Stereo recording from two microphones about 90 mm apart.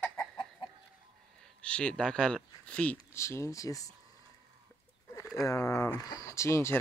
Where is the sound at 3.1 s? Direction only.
30° left (ahead or behind).